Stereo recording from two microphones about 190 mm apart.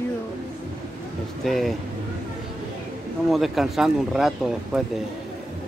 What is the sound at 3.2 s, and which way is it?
Speech, centre (ahead or behind).